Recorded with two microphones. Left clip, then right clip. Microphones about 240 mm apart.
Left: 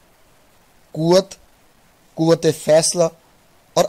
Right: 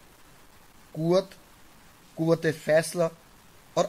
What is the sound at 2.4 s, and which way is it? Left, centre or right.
Speech, left.